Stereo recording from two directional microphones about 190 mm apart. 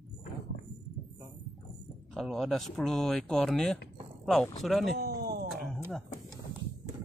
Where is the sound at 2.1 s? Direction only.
Centre (ahead or behind).